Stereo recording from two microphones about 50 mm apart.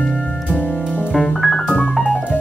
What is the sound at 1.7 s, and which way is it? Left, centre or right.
Music, centre.